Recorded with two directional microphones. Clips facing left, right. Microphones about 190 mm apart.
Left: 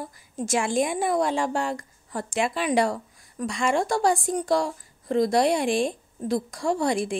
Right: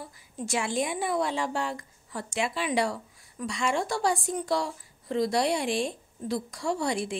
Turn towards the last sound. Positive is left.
turn(degrees=50)  # may be behind; listen again after turning